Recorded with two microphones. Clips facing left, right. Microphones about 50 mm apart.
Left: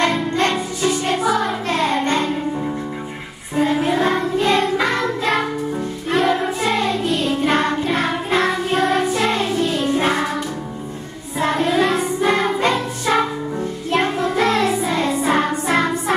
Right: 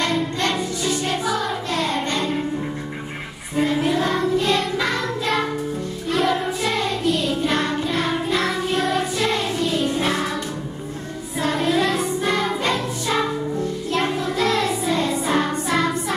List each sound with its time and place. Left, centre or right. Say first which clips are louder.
0.0 s music: left 4 dB; left
3.5 s child singing: left 2 dB; left
4.7 s music: left 3 dB; left
11.3 s music: left 3 dB; left
11.7 s child singing: left 2 dB; centre
12.0 s music: left 3 dB; left
14.8 s music: left 2 dB; left